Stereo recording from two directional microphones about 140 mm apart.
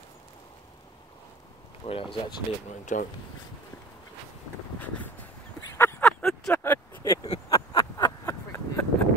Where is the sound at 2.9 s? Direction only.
65° left (ahead or behind).